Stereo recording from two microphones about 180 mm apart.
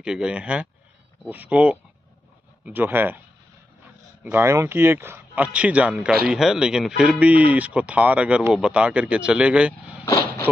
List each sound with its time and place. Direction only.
0.0 s a man's voice: 5° right (ahead or behind)
4.2 s a man's voice: 10° right (ahead or behind)
10.0 s vehicle: 15° left (ahead or behind)